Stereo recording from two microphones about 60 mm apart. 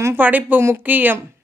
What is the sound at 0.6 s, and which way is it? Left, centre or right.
Speech, right.